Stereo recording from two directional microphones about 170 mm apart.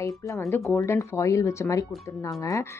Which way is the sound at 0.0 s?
20° left (ahead or behind).